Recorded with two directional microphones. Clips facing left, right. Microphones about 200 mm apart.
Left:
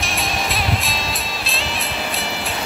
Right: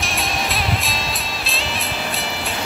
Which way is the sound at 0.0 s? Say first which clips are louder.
Even; centre (ahead or behind).